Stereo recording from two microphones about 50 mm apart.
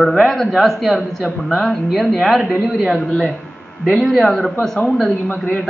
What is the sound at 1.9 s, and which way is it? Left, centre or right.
A woman's voice, centre.